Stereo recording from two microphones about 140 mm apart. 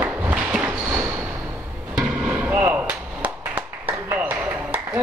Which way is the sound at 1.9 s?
10° right (ahead or behind).